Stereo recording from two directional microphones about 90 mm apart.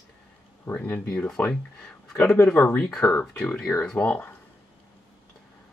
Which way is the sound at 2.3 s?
25° left (ahead or behind).